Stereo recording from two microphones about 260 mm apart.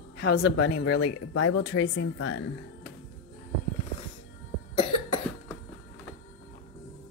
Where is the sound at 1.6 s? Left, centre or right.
Left.